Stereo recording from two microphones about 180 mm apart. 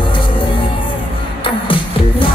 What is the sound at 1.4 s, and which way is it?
Music, 30° left (ahead or behind).